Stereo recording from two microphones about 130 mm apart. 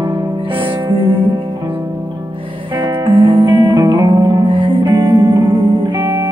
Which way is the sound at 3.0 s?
40° right (ahead or behind).